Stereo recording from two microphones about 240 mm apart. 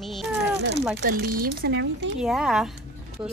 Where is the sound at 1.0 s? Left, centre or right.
Right.